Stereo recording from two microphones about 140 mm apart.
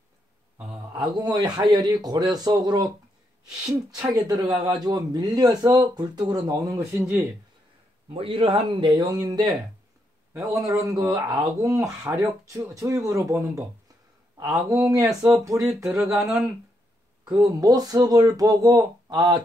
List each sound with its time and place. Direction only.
0.7 s a man's voice: 30° right (ahead or behind)
3.4 s speech: 5° right (ahead or behind)
4.1 s speech: 30° right (ahead or behind)
8.1 s a man's voice: 40° right (ahead or behind); by 15.7 s 20° right (ahead or behind)
15.8 s speech: 5° right (ahead or behind)
17.5 s speech: 25° right (ahead or behind)